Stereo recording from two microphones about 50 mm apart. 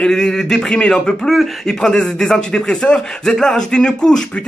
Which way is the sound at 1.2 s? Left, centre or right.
Centre.